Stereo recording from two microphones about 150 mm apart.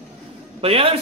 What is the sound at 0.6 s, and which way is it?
Speech, 40° right (ahead or behind).